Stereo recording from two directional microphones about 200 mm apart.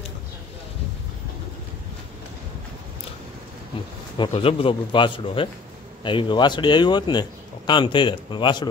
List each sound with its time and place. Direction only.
4.2 s speech: 30° left (ahead or behind)